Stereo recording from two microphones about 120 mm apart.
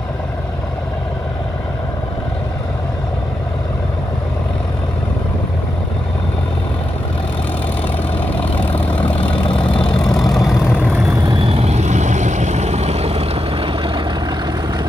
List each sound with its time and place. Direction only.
8.4 s vehicle: 10° left (ahead or behind)
11.2 s vehicle: 55° right (ahead or behind)